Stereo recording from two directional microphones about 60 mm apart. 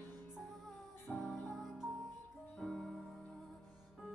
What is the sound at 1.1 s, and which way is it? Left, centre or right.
Music, centre.